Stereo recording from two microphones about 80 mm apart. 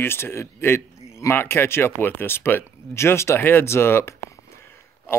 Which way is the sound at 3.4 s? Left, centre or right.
Left.